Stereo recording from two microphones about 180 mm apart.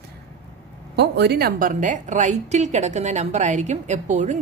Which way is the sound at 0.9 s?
65° right (ahead or behind).